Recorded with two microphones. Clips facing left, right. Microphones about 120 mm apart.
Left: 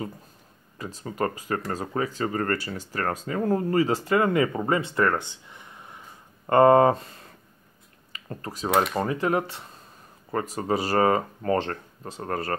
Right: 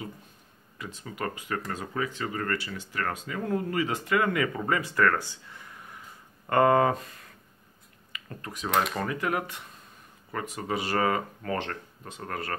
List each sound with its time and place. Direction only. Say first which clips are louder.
0.7 s speech: left 7 dB; 35° left (ahead or behind)